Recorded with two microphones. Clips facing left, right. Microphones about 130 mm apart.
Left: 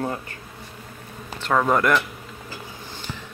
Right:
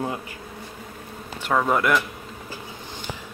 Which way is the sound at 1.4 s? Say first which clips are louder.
Left 1 dB; 5° right (ahead or behind).